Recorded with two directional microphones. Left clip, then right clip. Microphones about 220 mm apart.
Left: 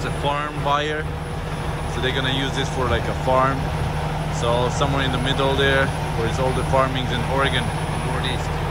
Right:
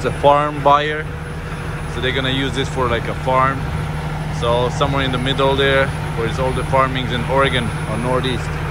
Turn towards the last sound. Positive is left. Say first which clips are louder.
# right 5 dB
turn(degrees=10)  # may be behind; listen again after turning